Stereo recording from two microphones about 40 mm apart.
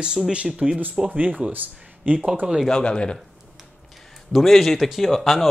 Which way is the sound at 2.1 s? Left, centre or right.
Right.